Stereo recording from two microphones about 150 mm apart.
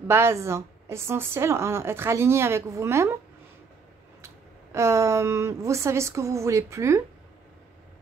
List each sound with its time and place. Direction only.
0.1 s a woman's voice: 15° right (ahead or behind)
4.7 s a woman's voice: 20° right (ahead or behind)